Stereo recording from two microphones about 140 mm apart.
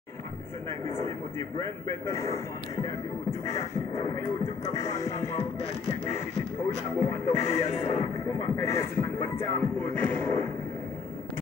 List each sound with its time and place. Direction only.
1.6 s a man's voice: 20° left (ahead or behind)
3.4 s a man's voice: 25° left (ahead or behind)
7.0 s speech: 50° left (ahead or behind)
8.0 s speech: 25° left (ahead or behind)